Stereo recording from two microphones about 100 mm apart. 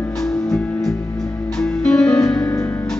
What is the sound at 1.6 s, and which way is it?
Music, 5° left (ahead or behind).